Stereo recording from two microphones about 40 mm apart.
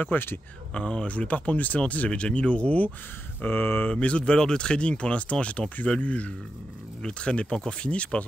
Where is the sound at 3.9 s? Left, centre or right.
Left.